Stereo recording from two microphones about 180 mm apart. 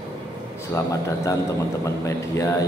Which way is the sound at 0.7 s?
20° left (ahead or behind).